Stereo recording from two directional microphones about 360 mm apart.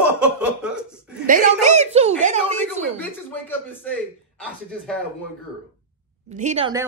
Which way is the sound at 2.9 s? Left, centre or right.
Centre.